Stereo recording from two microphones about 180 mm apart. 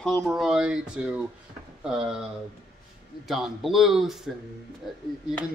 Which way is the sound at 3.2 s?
Centre (ahead or behind).